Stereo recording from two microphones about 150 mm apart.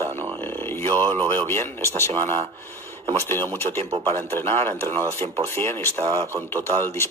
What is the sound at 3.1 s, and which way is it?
Speech, 15° left (ahead or behind).